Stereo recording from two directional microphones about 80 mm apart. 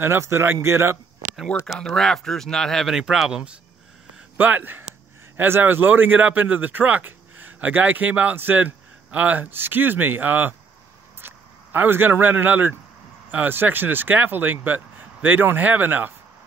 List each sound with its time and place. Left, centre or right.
0.0 s speech: right
1.8 s speech: centre
3.0 s speech: centre
4.4 s a man's voice: right